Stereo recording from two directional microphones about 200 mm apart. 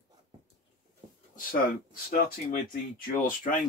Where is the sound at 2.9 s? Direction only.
45° left (ahead or behind).